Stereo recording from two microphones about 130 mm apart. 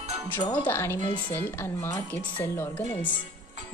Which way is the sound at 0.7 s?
20° left (ahead or behind).